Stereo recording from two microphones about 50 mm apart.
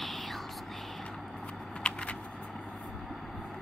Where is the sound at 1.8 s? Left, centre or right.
Left.